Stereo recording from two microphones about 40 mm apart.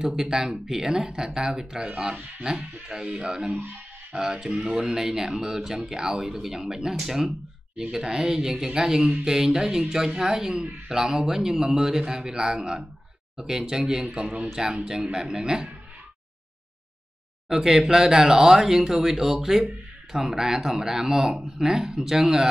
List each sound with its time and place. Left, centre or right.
0.0 s speech: centre
17.5 s speech: centre